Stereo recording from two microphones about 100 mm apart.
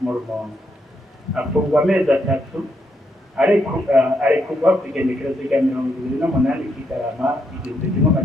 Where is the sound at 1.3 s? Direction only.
10° right (ahead or behind).